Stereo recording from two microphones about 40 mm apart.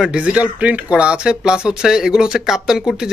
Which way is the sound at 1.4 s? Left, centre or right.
Centre.